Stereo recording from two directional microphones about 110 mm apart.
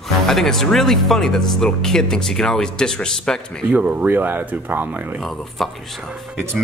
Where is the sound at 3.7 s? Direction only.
15° right (ahead or behind).